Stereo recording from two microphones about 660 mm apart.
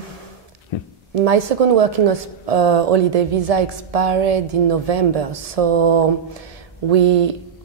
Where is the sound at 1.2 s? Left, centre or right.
Right.